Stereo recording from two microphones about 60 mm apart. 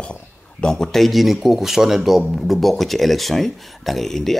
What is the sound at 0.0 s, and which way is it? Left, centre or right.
Speech, centre.